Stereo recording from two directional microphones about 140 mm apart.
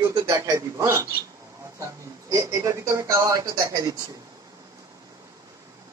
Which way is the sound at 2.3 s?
25° right (ahead or behind).